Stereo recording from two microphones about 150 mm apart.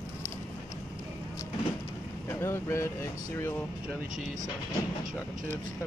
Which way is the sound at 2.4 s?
15° left (ahead or behind).